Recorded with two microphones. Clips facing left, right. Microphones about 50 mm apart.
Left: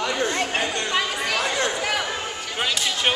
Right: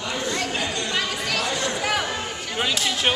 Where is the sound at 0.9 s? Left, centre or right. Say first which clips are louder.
Left 2 dB; centre.